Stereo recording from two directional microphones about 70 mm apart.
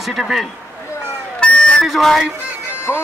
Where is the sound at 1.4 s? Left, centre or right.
Centre.